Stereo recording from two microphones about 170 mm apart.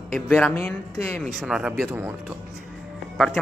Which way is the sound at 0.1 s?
5° left (ahead or behind).